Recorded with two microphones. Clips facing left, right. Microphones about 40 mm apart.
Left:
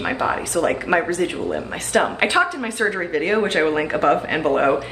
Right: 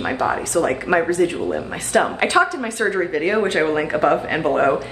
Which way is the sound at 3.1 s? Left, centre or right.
Centre.